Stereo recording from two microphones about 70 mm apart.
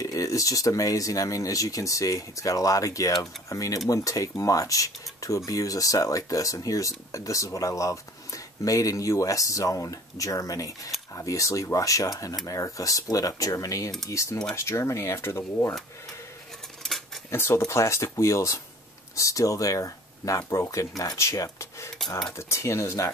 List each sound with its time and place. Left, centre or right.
0.0 s speech: left
16.8 s cutlery: centre
17.3 s speech: left